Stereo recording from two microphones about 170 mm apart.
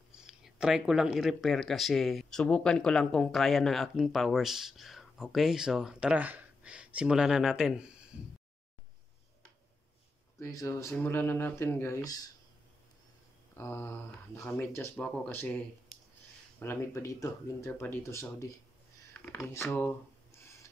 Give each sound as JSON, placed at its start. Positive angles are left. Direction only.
{"t": 0.2, "sound": "speech", "side_deg": -5}
{"t": 10.4, "sound": "speech", "side_deg": 20}
{"t": 13.6, "sound": "speech", "side_deg": 15}
{"t": 19.5, "sound": "a sound", "side_deg": 15}